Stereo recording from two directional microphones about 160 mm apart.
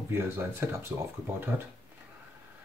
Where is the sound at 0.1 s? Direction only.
15° right (ahead or behind).